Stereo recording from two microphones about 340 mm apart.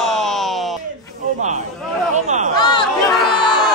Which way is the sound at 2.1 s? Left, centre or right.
Right.